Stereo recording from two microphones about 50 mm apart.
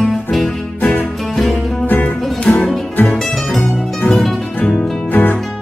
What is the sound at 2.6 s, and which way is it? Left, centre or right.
Music, centre.